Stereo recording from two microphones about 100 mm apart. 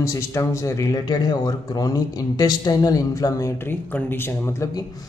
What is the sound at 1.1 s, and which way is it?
Speech, 45° left (ahead or behind).